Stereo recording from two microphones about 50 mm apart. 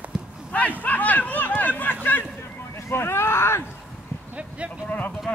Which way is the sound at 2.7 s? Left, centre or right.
Left.